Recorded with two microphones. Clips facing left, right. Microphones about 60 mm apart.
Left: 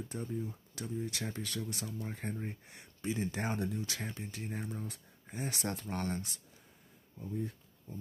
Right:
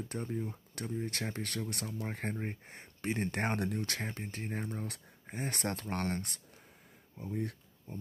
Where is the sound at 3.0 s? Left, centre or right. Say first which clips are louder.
Right 2 dB; right.